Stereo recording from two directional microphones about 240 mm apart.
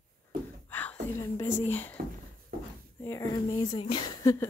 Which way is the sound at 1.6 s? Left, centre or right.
Centre.